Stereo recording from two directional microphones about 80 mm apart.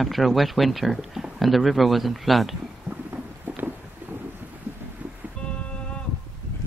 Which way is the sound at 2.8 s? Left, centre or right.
Right.